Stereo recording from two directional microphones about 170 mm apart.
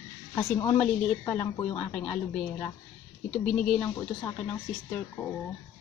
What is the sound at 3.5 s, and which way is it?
Speech, 10° left (ahead or behind).